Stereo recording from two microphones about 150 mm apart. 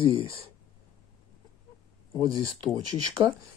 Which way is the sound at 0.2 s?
35° left (ahead or behind).